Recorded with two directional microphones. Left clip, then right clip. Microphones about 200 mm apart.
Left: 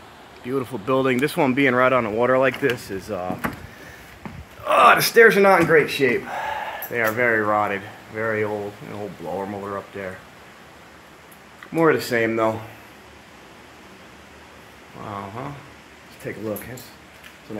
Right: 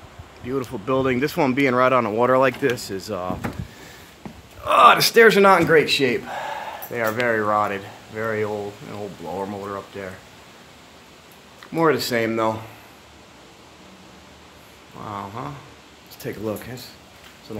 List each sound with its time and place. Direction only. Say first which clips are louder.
0.5 s speech: left 1 dB; centre (ahead or behind)
4.6 s speech: right 1 dB; 5° right (ahead or behind)
11.7 s speech: left 1 dB; centre (ahead or behind)
15.0 s speech: right 1 dB; 5° right (ahead or behind)
16.2 s speech: right 1 dB; 20° right (ahead or behind)